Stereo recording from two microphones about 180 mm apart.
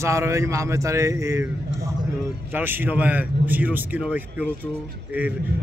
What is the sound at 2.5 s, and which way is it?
A man's voice, 10° right (ahead or behind).